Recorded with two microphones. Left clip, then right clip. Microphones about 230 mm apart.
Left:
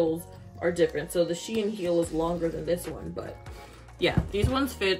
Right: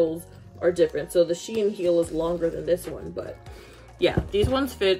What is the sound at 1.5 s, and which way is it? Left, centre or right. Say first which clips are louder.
Speech: right 5 dB; centre.